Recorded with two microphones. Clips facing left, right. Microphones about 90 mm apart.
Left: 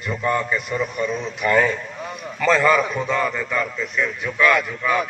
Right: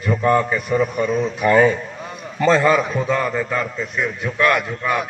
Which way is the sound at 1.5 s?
25° right (ahead or behind).